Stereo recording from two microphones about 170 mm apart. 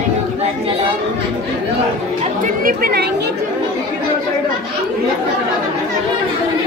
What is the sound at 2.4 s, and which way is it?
Speech, 55° right (ahead or behind).